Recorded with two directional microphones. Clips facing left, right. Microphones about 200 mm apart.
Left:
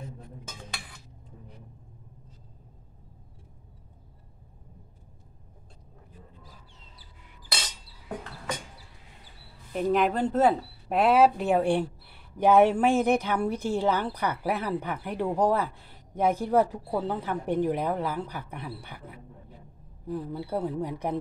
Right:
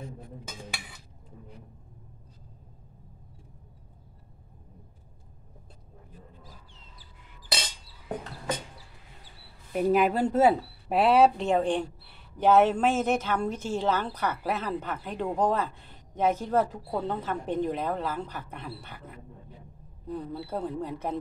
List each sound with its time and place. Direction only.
9.7 s speech: 10° right (ahead or behind); by 21.2 s 10° left (ahead or behind)